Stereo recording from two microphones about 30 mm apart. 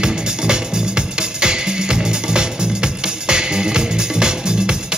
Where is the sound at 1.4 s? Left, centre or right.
Right.